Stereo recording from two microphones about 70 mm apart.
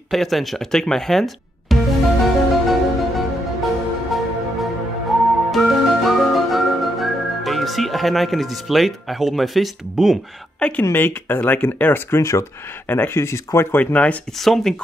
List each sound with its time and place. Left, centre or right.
0.1 s speech: centre
2.2 s music: centre
10.8 s speech: left
12.2 s speech: left
12.8 s speech: left
13.7 s speech: centre
14.4 s speech: centre